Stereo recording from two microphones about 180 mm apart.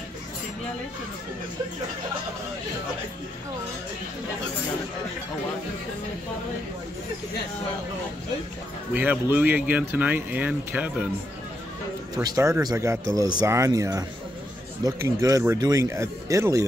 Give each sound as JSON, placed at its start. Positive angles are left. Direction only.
{"t": 8.9, "sound": "speech", "side_deg": -10}
{"t": 12.2, "sound": "speech", "side_deg": -20}